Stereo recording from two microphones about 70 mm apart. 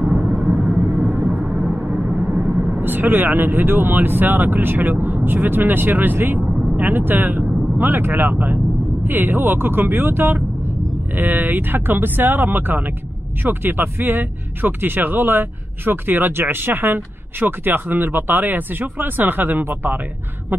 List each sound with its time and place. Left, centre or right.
0.0 s vehicle: centre
0.3 s vehicle: centre
1.2 s a sound: centre
1.7 s vehicle: centre
2.8 s speech: right
6.4 s vehicle: centre
6.8 s speech: right